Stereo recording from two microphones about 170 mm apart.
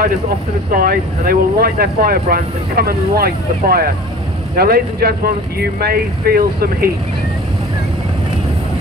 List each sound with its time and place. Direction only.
0.7 s speech: 60° right (ahead or behind)